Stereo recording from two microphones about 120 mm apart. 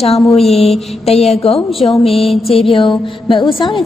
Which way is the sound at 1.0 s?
60° left (ahead or behind).